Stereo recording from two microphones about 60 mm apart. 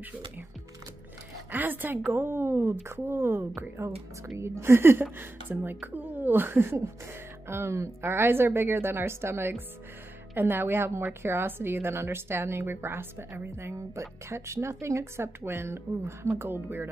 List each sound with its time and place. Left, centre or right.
1.5 s speech: right